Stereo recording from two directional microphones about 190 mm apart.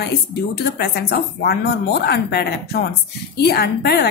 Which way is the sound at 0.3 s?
60° left (ahead or behind).